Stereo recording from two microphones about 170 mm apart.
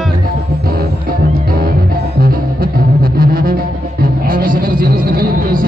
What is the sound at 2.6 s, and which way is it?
Music, 60° right (ahead or behind).